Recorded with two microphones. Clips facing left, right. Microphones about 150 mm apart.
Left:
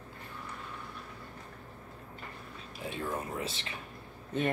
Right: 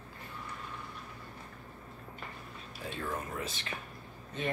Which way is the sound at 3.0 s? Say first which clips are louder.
Left 2 dB; 25° left (ahead or behind).